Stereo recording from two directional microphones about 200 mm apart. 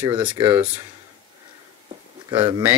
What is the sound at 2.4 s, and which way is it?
Speech, 10° right (ahead or behind).